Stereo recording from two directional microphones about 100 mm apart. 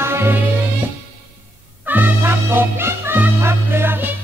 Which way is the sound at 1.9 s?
20° right (ahead or behind).